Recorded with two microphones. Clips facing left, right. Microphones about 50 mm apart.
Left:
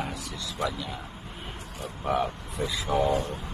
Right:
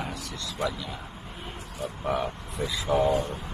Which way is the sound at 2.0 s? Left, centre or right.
Centre.